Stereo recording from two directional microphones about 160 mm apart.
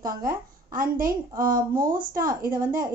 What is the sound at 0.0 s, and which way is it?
Speech, 60° right (ahead or behind).